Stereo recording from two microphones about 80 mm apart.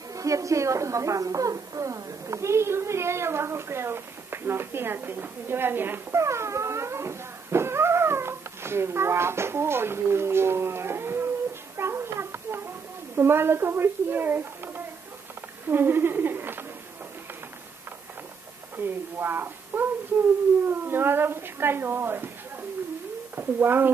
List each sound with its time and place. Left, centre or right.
0.1 s a woman's voice: right
6.2 s dog: right
13.1 s a woman's voice: right
18.8 s a woman's voice: right
23.3 s speech: right